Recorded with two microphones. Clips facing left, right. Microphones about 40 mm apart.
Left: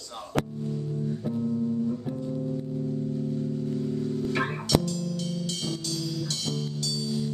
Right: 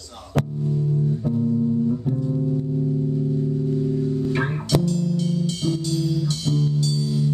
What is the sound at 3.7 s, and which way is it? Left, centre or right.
Music, centre.